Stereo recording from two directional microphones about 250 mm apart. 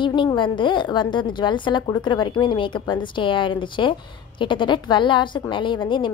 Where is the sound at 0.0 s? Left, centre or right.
Centre.